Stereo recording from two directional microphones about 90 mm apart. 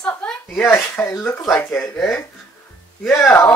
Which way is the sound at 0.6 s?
25° left (ahead or behind).